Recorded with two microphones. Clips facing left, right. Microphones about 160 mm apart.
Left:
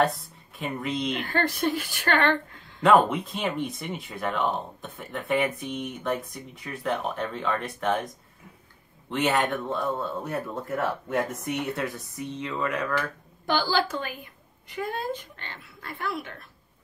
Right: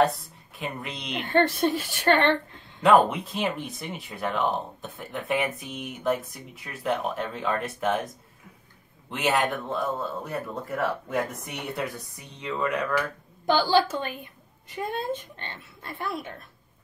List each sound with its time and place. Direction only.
0.0 s speech: centre (ahead or behind)
1.2 s speech: 25° right (ahead or behind)
2.8 s speech: centre (ahead or behind)
9.1 s speech: centre (ahead or behind)
13.5 s speech: 25° right (ahead or behind)